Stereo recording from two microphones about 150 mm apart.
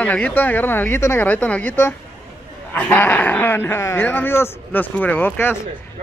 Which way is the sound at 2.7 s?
15° left (ahead or behind).